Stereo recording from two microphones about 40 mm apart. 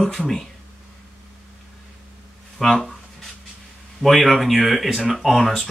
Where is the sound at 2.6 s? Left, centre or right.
Centre.